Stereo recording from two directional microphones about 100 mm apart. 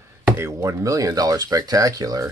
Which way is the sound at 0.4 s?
30° right (ahead or behind).